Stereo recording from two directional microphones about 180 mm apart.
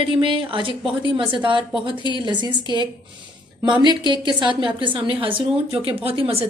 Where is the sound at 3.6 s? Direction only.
25° right (ahead or behind).